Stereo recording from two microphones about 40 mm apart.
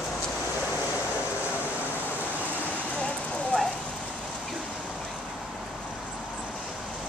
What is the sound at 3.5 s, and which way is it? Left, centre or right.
Rain on surface, left.